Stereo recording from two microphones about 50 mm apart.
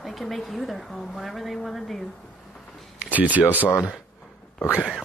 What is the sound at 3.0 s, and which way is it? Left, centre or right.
Speech, right.